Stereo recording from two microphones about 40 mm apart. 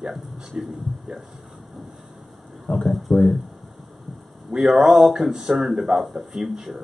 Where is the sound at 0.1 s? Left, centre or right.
Centre.